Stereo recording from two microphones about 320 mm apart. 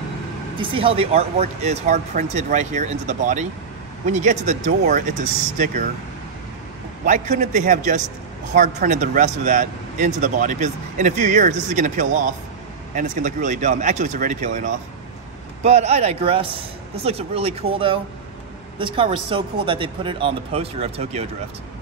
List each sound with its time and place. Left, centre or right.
0.6 s speech: centre
7.1 s speech: right